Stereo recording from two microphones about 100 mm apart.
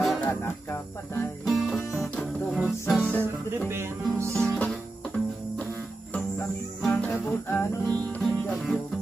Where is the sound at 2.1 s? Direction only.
10° left (ahead or behind).